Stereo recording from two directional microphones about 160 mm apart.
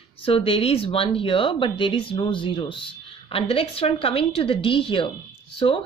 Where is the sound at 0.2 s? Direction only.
35° left (ahead or behind).